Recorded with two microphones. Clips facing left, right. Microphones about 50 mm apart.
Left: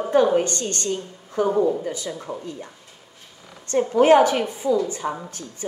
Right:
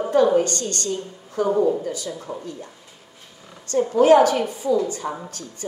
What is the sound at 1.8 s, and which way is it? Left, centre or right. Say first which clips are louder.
Speech: even; left.